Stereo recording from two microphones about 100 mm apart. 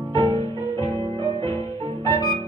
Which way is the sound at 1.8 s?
35° left (ahead or behind).